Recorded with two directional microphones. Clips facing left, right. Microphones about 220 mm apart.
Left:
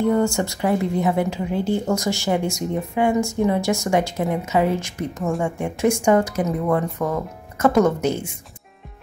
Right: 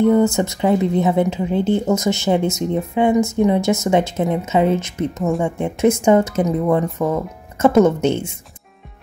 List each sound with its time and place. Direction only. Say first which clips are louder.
0.0 s speech: right 5 dB; 20° right (ahead or behind)